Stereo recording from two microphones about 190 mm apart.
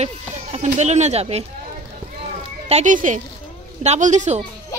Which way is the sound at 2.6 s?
40° right (ahead or behind).